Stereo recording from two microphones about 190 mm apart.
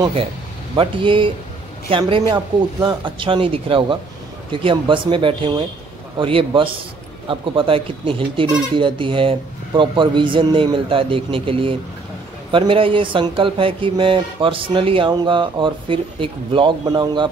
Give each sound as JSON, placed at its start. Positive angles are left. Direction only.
{"t": 0.0, "sound": "speech", "side_deg": -30}